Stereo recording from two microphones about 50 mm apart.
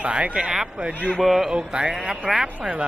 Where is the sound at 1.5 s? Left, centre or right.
Centre.